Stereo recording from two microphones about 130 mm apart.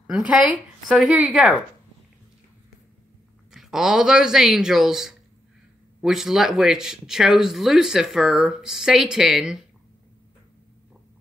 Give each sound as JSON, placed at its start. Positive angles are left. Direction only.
{"t": 0.8, "sound": "a woman's voice", "side_deg": -5}
{"t": 3.5, "sound": "speech", "side_deg": -5}